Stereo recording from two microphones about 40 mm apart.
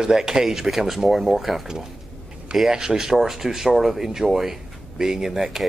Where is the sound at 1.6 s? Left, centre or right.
Centre.